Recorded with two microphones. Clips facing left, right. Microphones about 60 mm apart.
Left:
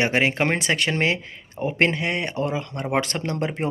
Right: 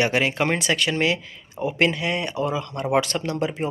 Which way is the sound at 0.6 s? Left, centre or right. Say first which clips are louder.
Even; left.